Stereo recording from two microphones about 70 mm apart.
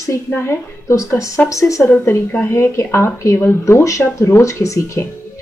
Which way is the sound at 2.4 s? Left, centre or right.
Left.